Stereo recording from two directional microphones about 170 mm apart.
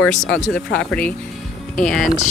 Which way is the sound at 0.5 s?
5° left (ahead or behind).